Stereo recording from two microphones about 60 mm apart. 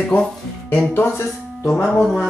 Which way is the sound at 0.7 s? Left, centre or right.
Left.